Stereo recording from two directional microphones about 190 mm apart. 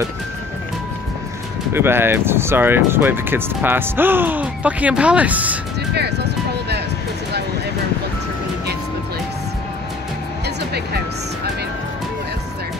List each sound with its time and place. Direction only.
1.7 s speech: 10° right (ahead or behind)
5.9 s music: 60° right (ahead or behind)